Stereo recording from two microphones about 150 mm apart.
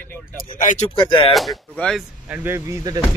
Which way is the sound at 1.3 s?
5° left (ahead or behind).